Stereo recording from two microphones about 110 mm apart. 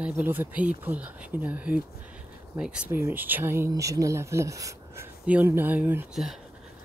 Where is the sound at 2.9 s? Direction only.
20° right (ahead or behind).